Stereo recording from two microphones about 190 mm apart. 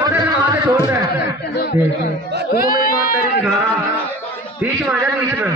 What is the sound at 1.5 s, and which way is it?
Snicker, 55° left (ahead or behind).